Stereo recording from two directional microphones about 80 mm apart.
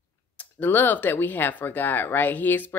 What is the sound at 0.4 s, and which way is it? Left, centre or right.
Speech, left.